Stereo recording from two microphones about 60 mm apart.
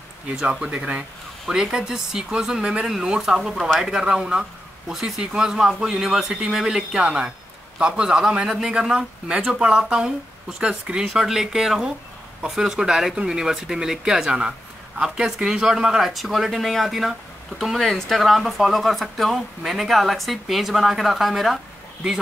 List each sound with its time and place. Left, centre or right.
0.4 s speech: centre
1.5 s speech: centre